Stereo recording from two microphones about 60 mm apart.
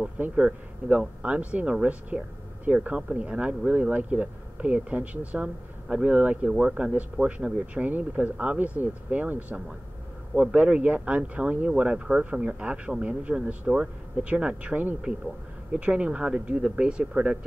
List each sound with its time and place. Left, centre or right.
0.4 s speech: centre